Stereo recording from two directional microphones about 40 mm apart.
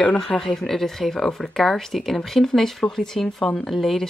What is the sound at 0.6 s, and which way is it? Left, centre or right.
Speech, centre.